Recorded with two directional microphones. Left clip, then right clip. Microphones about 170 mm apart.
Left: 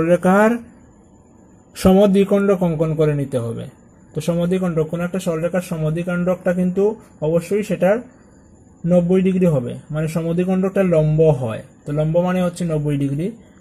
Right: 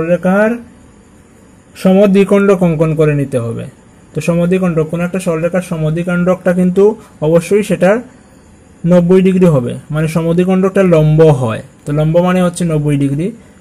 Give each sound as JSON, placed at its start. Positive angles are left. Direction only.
{"t": 0.0, "sound": "speech", "side_deg": 20}
{"t": 2.0, "sound": "a man's voice", "side_deg": 0}